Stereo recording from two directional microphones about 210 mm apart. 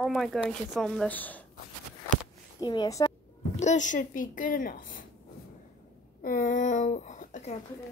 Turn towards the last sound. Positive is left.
turn(degrees=35)  # may be behind; listen again after turning